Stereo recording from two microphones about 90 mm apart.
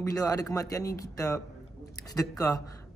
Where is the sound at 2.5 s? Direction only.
35° left (ahead or behind).